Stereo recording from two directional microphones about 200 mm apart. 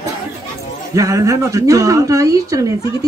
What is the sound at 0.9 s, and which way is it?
A woman's voice, 15° right (ahead or behind).